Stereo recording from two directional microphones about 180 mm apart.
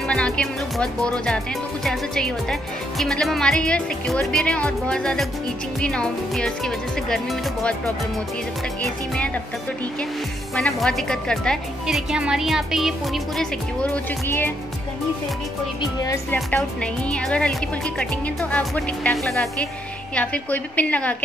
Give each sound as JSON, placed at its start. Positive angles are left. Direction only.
{"t": 0.1, "sound": "speech", "side_deg": 5}
{"t": 8.8, "sound": "speech", "side_deg": 5}
{"t": 10.5, "sound": "speech", "side_deg": 0}
{"t": 16.0, "sound": "a woman's voice", "side_deg": 20}
{"t": 16.3, "sound": "a woman's voice", "side_deg": 5}